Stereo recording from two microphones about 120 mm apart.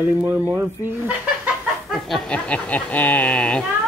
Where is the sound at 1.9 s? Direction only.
Centre (ahead or behind).